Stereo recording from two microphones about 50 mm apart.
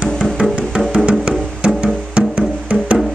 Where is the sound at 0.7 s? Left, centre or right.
Right.